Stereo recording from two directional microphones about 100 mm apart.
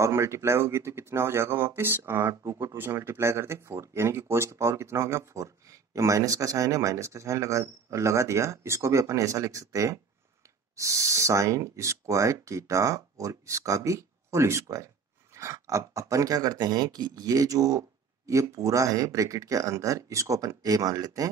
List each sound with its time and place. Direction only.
0.0 s speech: 30° right (ahead or behind)